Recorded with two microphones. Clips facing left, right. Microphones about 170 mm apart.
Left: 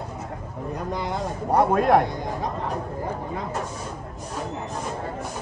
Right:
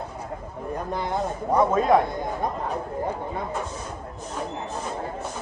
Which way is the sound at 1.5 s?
65° left (ahead or behind).